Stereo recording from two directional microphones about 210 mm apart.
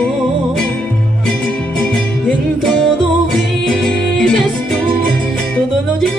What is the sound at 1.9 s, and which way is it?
Music, 5° left (ahead or behind).